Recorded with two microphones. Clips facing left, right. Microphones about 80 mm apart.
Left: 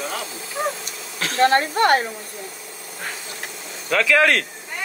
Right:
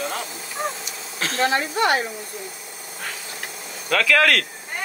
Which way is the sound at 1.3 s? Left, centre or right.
Left.